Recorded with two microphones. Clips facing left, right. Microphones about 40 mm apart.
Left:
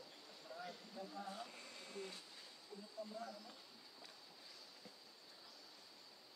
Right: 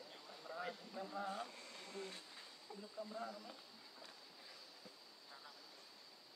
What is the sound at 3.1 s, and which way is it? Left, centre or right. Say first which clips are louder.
Speech: right 2 dB; right.